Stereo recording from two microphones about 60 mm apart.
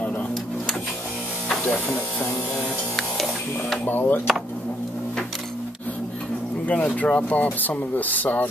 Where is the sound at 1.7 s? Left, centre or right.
Left.